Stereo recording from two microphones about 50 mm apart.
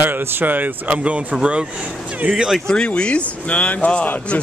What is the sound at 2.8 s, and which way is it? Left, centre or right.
Speech, left.